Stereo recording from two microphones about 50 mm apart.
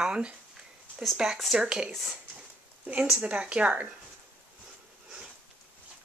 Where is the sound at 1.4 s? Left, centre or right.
Centre.